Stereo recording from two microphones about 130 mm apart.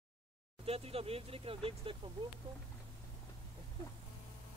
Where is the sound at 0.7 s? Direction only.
50° right (ahead or behind).